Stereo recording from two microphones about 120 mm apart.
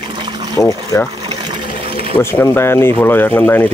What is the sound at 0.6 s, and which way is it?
Speech, 25° left (ahead or behind).